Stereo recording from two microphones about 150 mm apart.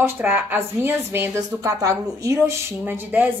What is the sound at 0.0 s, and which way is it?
A woman's voice, 15° right (ahead or behind).